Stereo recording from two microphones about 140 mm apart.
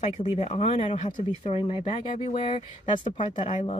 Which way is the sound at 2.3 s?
40° left (ahead or behind).